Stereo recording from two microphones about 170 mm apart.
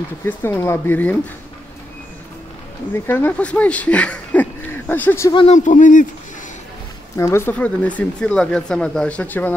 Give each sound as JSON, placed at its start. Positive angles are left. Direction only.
{"t": 0.2, "sound": "speech", "side_deg": 15}
{"t": 2.9, "sound": "speech", "side_deg": 10}
{"t": 5.5, "sound": "speech", "side_deg": 50}
{"t": 7.2, "sound": "speech", "side_deg": 15}